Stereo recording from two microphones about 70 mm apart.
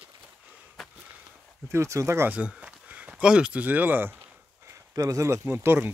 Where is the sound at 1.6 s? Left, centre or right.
Right.